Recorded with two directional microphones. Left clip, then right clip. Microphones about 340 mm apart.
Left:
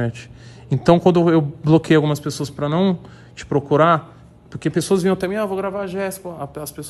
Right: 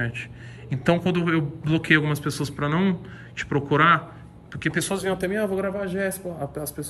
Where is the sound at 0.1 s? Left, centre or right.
Centre.